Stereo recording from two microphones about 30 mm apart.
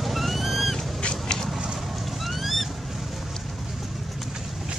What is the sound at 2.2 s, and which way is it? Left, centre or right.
Boat, centre.